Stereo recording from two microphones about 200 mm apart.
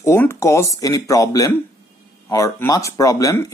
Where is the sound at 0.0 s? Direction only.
15° left (ahead or behind).